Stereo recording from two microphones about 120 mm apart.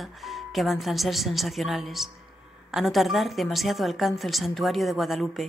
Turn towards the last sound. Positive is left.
turn(degrees=0)  # may be behind; listen again after turning